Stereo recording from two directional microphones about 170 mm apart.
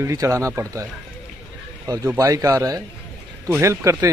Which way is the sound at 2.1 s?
20° right (ahead or behind).